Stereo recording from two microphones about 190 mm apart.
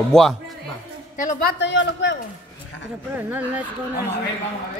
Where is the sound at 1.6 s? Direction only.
70° left (ahead or behind).